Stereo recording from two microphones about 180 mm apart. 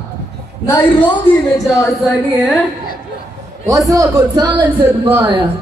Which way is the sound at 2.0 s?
5° left (ahead or behind).